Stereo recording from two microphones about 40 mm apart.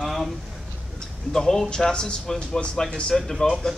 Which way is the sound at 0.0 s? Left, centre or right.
Centre.